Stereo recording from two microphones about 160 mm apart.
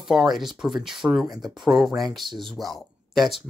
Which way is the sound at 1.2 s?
25° right (ahead or behind).